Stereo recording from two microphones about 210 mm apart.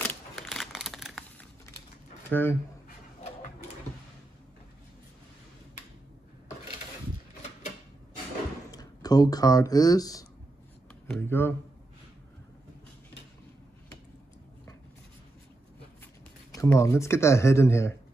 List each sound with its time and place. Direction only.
0.0 s a sound: 5° left (ahead or behind)
2.3 s speech: 10° left (ahead or behind)
8.7 s speech: 20° left (ahead or behind)
16.5 s speech: 15° left (ahead or behind)